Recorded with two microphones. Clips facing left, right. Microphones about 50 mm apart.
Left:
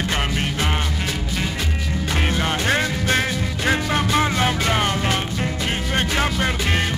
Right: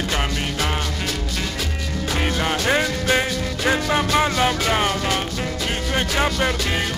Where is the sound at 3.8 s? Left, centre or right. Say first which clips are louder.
Right 1 dB; centre.